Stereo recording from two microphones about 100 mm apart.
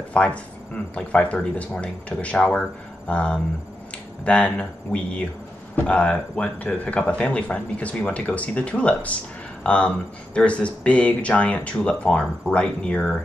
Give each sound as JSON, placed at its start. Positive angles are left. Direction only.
{"t": 0.1, "sound": "speech", "side_deg": 10}